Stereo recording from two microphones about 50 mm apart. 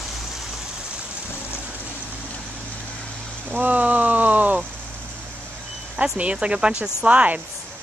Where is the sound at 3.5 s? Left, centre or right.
Right.